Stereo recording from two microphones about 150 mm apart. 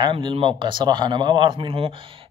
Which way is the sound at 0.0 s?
35° right (ahead or behind).